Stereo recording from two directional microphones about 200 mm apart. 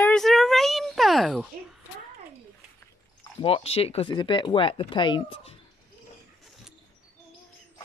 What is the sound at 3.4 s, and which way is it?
Speech, 30° left (ahead or behind).